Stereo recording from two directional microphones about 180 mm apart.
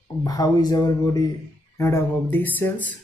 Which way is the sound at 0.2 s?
20° left (ahead or behind).